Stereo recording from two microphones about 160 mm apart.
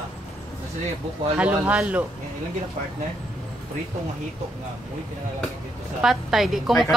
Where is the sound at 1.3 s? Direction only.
10° right (ahead or behind).